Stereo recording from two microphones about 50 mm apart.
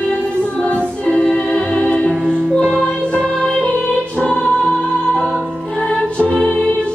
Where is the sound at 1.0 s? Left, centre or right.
Centre.